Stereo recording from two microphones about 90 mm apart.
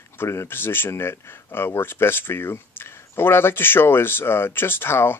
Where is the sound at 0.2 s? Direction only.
30° left (ahead or behind).